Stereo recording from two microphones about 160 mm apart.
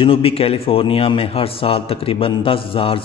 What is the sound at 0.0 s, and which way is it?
A man's voice, 35° left (ahead or behind).